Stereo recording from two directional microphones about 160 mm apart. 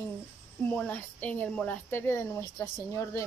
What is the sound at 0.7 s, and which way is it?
Speech, 10° left (ahead or behind).